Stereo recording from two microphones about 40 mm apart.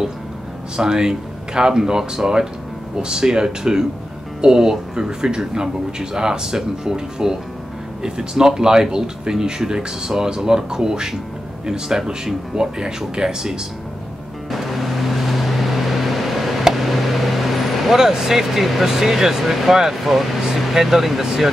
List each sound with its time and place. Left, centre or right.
0.7 s speech: centre
14.5 s vehicle: centre
17.9 s speech: centre